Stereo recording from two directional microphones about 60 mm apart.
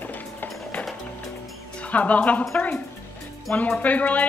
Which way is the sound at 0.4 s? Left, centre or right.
Left.